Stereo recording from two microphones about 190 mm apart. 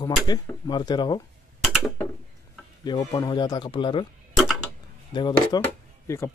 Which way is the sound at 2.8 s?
20° left (ahead or behind).